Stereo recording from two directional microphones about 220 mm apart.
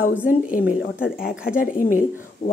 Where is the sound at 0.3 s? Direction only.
40° left (ahead or behind).